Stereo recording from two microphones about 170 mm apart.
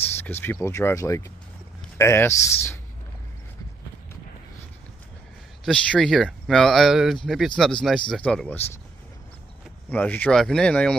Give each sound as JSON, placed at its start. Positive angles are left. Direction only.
{"t": 0.2, "sound": "speech", "side_deg": 10}
{"t": 5.7, "sound": "speech", "side_deg": 5}
{"t": 9.8, "sound": "speech", "side_deg": 10}